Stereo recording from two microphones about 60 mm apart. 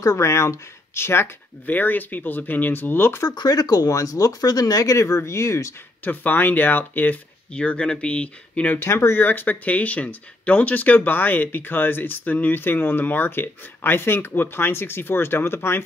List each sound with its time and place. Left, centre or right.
0.0 s speech: left
1.7 s speech: left
3.3 s speech: left
4.9 s speech: left
6.0 s speech: left
7.5 s speech: centre
8.7 s speech: left
9.2 s speech: left
9.7 s speech: left